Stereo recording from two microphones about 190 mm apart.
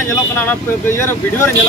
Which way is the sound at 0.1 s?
10° left (ahead or behind).